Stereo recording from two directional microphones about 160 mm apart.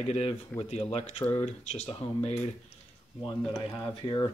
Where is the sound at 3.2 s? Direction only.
25° left (ahead or behind).